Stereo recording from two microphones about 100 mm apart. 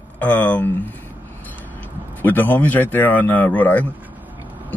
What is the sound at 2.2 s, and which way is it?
Speech, 20° left (ahead or behind).